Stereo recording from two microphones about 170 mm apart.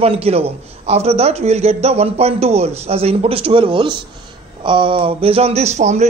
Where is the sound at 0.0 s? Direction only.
35° right (ahead or behind).